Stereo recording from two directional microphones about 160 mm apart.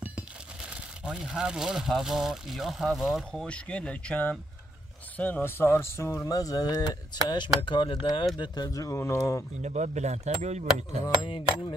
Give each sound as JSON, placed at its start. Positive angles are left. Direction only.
{"t": 1.0, "sound": "speech", "side_deg": -5}
{"t": 9.6, "sound": "speech", "side_deg": -45}
{"t": 11.2, "sound": "a sound", "side_deg": 30}